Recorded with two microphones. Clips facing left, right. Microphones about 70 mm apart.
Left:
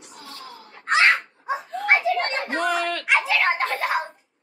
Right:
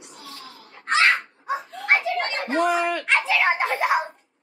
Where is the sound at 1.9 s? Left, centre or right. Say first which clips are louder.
Left 2 dB; centre.